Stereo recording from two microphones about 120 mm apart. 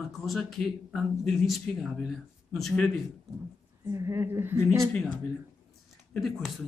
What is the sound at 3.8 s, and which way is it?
Speech, 25° right (ahead or behind).